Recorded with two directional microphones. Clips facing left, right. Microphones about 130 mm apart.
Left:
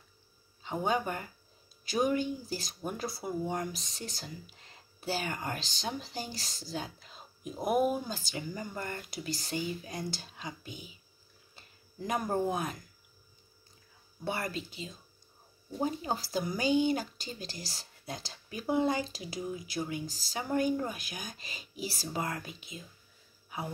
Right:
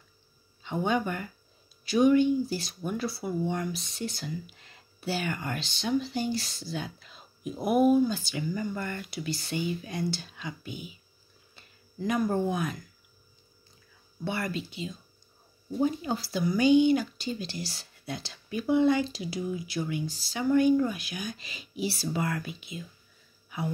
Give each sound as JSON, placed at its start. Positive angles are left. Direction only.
{"t": 0.6, "sound": "speech", "side_deg": 35}
{"t": 12.3, "sound": "speech", "side_deg": 35}
{"t": 14.2, "sound": "speech", "side_deg": 40}